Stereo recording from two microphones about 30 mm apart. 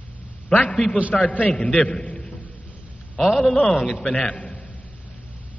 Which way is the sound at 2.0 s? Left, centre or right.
Left.